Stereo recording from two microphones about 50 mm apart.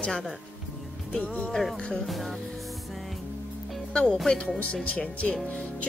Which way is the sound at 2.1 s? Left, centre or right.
Centre.